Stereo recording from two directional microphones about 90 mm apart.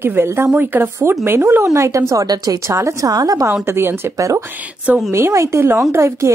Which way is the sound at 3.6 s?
25° right (ahead or behind).